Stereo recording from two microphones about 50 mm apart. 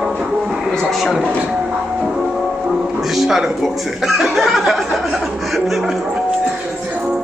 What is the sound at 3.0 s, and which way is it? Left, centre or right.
Speech, centre.